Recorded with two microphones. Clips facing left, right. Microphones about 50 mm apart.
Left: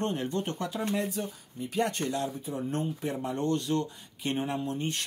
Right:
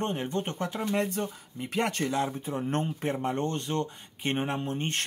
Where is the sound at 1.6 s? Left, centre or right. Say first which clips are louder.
Right 1 dB; right.